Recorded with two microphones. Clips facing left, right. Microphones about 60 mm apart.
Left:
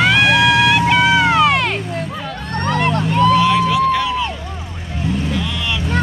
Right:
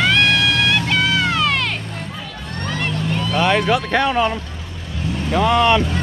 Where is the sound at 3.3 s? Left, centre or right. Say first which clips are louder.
Left 3 dB; right.